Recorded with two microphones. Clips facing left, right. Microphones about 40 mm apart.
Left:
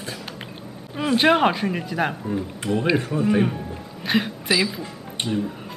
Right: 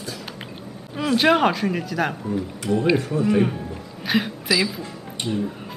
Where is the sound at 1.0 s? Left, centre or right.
Centre.